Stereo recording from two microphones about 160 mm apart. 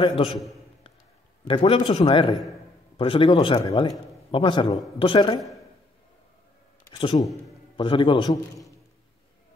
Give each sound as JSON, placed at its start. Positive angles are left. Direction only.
{"t": 0.0, "sound": "a man's voice", "side_deg": 35}
{"t": 1.5, "sound": "a man's voice", "side_deg": 35}
{"t": 6.9, "sound": "a man's voice", "side_deg": 35}